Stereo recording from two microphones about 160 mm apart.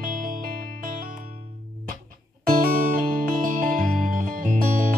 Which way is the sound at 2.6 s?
60° right (ahead or behind).